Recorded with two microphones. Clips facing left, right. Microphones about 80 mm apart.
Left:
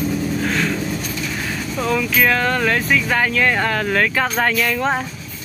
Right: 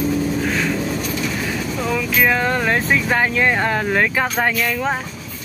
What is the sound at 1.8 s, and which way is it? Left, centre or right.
Speech, centre.